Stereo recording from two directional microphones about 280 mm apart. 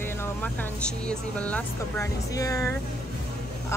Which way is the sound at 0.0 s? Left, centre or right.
Centre.